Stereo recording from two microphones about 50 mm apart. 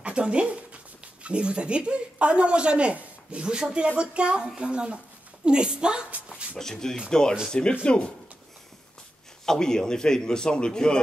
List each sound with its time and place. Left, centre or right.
0.0 s a woman's voice: right
6.6 s a man's voice: centre
9.5 s a man's voice: centre